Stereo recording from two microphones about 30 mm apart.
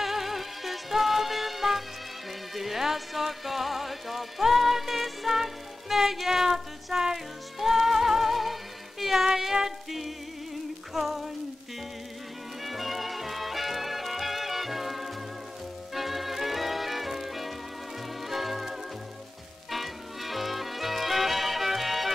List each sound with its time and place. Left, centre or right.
0.0 s music: centre
9.0 s female singing: centre
10.9 s a sound: centre
12.6 s music: centre